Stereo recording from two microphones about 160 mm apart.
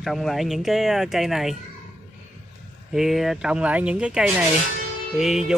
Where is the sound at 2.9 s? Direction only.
Centre (ahead or behind).